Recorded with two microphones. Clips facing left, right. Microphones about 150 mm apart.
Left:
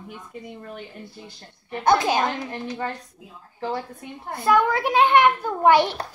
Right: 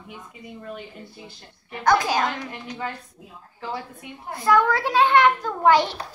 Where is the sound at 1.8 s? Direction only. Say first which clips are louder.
Left 1 dB; 20° left (ahead or behind).